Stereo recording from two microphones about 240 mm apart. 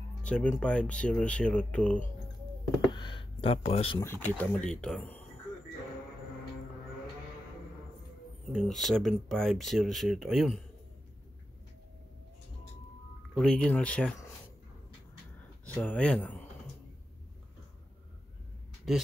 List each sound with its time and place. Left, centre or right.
0.2 s speech: centre
2.9 s speech: centre
4.0 s speech: centre
8.5 s speech: centre
13.4 s speech: centre
15.6 s speech: centre
18.9 s speech: centre